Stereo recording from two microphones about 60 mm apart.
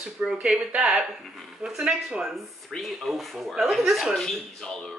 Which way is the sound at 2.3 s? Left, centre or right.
Centre.